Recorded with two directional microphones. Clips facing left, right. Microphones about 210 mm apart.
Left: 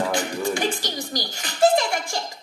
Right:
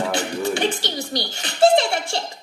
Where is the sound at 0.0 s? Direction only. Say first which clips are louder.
Right 1 dB; 25° right (ahead or behind).